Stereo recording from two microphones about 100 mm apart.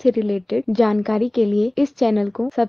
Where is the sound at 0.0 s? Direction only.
Centre (ahead or behind).